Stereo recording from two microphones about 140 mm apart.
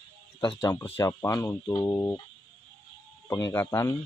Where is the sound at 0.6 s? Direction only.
20° left (ahead or behind).